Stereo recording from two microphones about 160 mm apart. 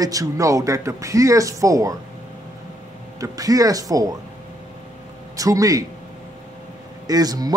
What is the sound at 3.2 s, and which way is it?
Speech, 20° right (ahead or behind).